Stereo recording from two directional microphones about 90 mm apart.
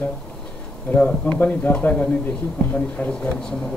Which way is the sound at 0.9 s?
15° left (ahead or behind).